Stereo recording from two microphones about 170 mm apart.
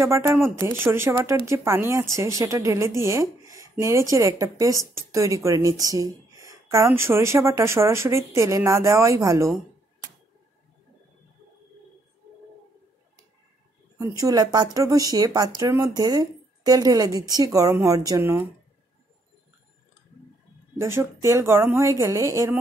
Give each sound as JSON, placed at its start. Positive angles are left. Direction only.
{"t": 0.0, "sound": "speech", "side_deg": -15}
{"t": 13.9, "sound": "speech", "side_deg": -20}
{"t": 20.7, "sound": "speech", "side_deg": -15}